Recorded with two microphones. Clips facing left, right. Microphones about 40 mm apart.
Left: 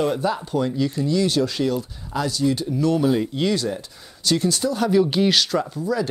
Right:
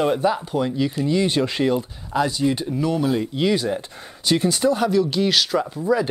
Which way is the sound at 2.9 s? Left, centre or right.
Centre.